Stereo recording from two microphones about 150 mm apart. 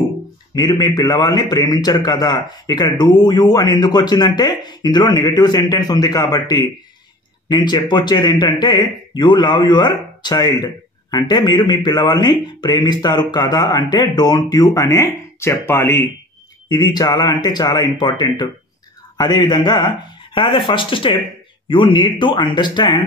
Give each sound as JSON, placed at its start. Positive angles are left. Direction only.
{"t": 0.6, "sound": "speech", "side_deg": 25}
{"t": 16.6, "sound": "speech", "side_deg": 30}